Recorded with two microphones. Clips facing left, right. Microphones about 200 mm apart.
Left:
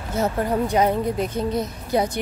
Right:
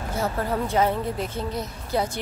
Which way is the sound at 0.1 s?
20° left (ahead or behind).